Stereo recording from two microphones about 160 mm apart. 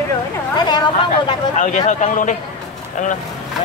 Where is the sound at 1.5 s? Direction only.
50° left (ahead or behind).